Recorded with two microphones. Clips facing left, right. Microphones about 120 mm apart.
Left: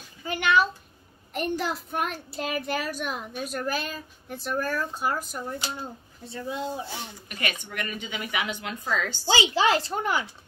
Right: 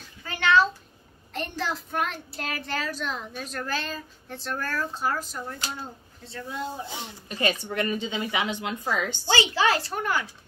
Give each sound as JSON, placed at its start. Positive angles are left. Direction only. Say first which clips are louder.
{"t": 0.2, "sound": "a child's voice", "louder": "right 1 dB", "side_deg": 15}
{"t": 6.9, "sound": "a woman's voice", "louder": "right 1 dB", "side_deg": -25}
{"t": 9.3, "sound": "speech", "louder": "left 1 dB", "side_deg": 20}